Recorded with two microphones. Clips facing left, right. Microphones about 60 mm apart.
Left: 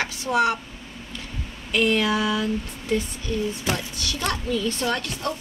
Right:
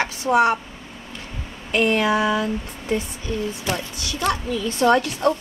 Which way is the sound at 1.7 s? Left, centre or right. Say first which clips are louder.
Right 2 dB; right.